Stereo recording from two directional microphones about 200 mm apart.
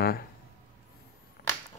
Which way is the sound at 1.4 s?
45° left (ahead or behind).